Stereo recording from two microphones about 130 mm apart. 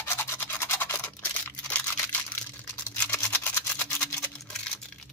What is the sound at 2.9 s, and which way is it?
Toothbrush, 15° left (ahead or behind).